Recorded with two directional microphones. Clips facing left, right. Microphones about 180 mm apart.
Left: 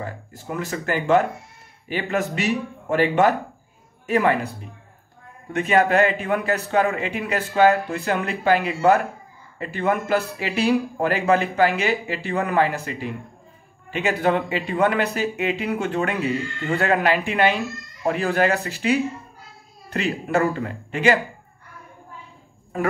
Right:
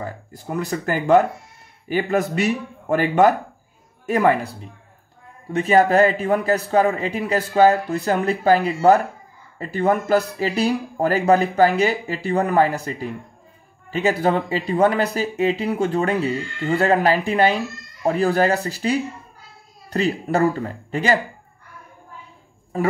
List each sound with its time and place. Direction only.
0.5 s a man's voice: 40° right (ahead or behind)
5.6 s a man's voice: 35° right (ahead or behind)